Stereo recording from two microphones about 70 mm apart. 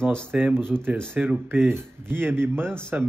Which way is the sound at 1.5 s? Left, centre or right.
Right.